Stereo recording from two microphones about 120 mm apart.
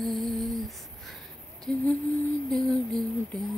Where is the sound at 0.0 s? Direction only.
Centre (ahead or behind).